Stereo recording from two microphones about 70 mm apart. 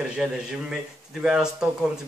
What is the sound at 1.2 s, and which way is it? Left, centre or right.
Speech, centre.